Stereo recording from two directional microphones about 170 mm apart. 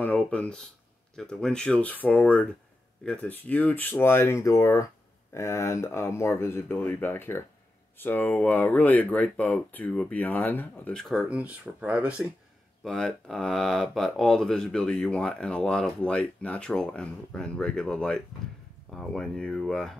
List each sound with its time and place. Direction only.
0.0 s speech: 10° left (ahead or behind)